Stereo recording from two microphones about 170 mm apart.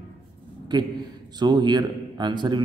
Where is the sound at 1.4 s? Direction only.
25° right (ahead or behind).